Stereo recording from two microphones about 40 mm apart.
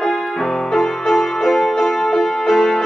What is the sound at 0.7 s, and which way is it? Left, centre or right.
Music, centre.